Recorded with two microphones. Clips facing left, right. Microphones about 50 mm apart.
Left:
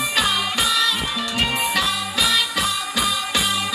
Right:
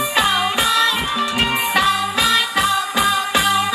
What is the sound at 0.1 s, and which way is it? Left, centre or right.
Music, right.